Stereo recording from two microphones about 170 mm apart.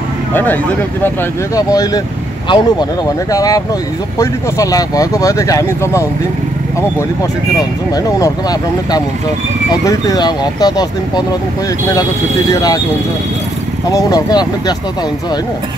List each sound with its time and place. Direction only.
0.3 s speech: 10° left (ahead or behind)
7.5 s speech: 20° left (ahead or behind)
13.8 s speech: 20° left (ahead or behind)